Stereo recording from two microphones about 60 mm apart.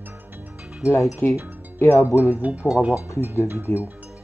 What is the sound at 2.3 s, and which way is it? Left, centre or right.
Speech, right.